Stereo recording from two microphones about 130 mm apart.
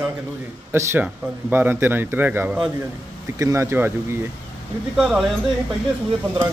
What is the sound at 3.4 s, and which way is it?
Speech, 20° right (ahead or behind).